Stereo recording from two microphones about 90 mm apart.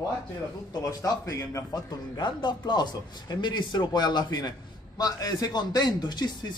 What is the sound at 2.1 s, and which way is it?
A man's voice, 55° left (ahead or behind).